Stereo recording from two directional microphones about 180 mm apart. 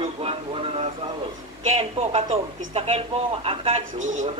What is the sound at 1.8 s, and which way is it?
Speech, 35° right (ahead or behind).